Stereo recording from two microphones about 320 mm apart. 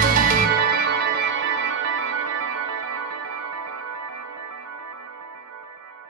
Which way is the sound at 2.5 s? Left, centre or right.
Right.